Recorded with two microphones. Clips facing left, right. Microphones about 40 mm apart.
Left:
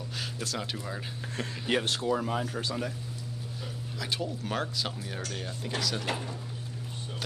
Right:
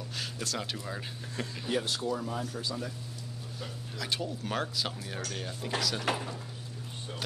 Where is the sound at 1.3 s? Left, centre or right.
Left.